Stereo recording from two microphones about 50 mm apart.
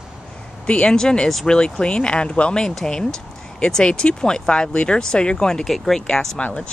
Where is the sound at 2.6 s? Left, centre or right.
Centre.